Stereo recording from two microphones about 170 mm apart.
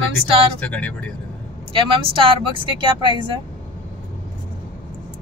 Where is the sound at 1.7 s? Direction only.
30° right (ahead or behind).